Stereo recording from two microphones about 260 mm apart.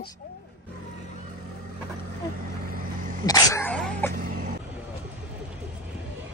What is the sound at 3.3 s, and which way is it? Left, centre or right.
Dog, centre.